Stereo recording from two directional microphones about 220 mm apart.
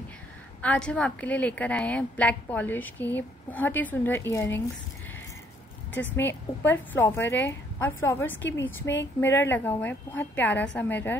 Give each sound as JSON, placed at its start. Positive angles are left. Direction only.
{"t": 0.6, "sound": "a woman's voice", "side_deg": 5}
{"t": 6.1, "sound": "a woman's voice", "side_deg": 10}
{"t": 8.5, "sound": "a woman's voice", "side_deg": 55}
{"t": 9.2, "sound": "a woman's voice", "side_deg": 10}